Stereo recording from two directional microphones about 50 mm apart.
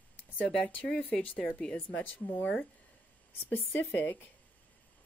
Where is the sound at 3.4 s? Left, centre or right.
Left.